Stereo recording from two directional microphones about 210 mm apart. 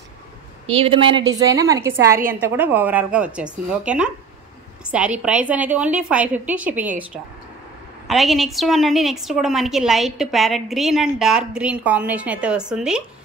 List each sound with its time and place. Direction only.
0.7 s a woman's voice: 25° right (ahead or behind); by 4.1 s 5° right (ahead or behind)
5.2 s a woman's voice: 5° right (ahead or behind)
8.1 s a woman's voice: centre (ahead or behind)